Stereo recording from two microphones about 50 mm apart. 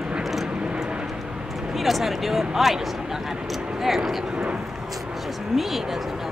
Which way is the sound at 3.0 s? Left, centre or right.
Centre.